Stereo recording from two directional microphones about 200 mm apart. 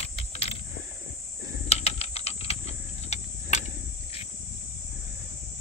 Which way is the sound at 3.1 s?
35° left (ahead or behind).